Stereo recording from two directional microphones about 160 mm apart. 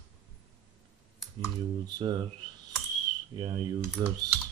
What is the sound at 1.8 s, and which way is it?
Speech, 25° right (ahead or behind).